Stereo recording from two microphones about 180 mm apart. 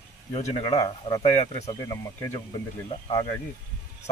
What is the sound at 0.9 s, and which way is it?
Speech, 20° left (ahead or behind).